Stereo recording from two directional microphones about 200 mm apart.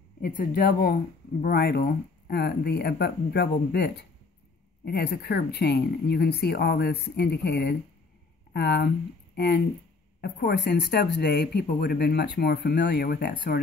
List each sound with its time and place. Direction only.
0.2 s speech: 45° left (ahead or behind)